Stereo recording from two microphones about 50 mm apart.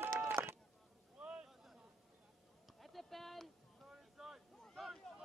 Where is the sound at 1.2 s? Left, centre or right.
Right.